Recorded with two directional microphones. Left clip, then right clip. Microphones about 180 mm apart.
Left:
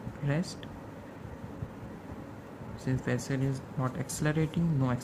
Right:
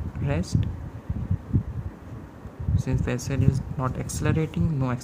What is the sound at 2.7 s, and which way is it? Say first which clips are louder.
Speech: right 4 dB; 25° right (ahead or behind).